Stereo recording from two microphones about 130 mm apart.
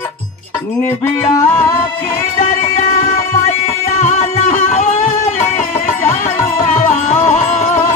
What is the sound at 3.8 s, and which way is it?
Music, 60° left (ahead or behind).